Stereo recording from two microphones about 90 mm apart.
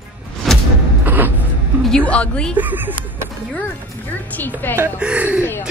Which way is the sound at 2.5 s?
20° right (ahead or behind).